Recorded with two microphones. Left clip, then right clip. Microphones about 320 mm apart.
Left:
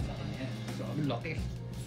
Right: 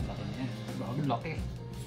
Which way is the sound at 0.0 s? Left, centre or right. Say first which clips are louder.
Right 1 dB; centre.